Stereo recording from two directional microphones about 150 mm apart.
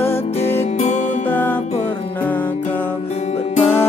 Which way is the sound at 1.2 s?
10° left (ahead or behind).